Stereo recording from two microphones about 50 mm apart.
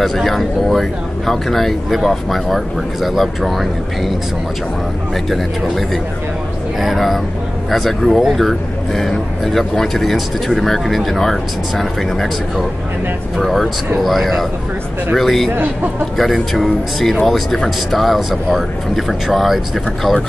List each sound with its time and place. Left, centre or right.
0.0 s a man's voice: centre
6.8 s a man's voice: centre
15.5 s speech: right
16.5 s a man's voice: centre